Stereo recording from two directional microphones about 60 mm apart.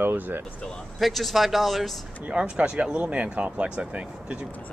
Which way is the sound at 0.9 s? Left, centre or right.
Centre.